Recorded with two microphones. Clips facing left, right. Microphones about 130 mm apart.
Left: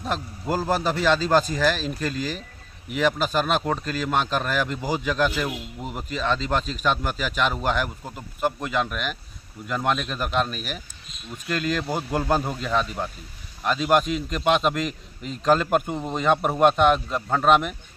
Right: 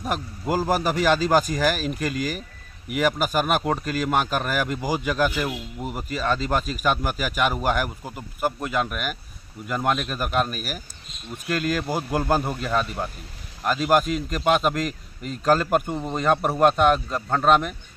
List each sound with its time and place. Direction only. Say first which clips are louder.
0.0 s a man's voice: right 1 dB; 10° right (ahead or behind)